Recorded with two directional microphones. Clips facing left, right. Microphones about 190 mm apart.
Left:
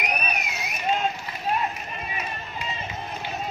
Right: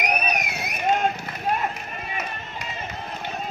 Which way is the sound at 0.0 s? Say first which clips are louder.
Right 4 dB; 55° right (ahead or behind).